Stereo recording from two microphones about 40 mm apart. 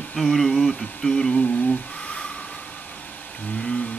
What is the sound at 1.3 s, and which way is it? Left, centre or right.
Speech, left.